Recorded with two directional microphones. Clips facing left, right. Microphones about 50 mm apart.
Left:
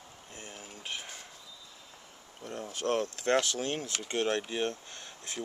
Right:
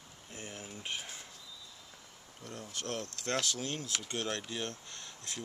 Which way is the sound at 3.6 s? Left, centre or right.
Left.